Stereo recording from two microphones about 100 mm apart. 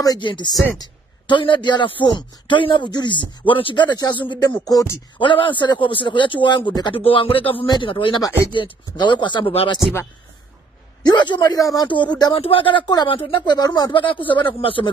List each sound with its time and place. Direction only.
0.2 s a man's voice: 50° left (ahead or behind)
5.2 s a man's voice: 55° left (ahead or behind)
7.0 s a man's voice: 65° left (ahead or behind)
11.1 s a man's voice: 50° left (ahead or behind)
11.9 s a man's voice: 50° left (ahead or behind)
12.4 s a man's voice: 65° left (ahead or behind); by 13.9 s 40° left (ahead or behind)
13.9 s a man's voice: 60° left (ahead or behind)